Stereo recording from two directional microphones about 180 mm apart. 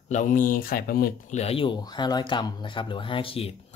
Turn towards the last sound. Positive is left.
turn(degrees=35)  # may be behind; listen again after turning